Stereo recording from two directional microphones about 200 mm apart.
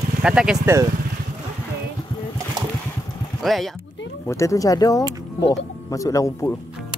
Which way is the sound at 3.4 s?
Centre (ahead or behind).